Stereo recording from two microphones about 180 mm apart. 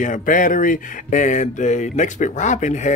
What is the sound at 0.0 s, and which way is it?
Speech, 45° left (ahead or behind).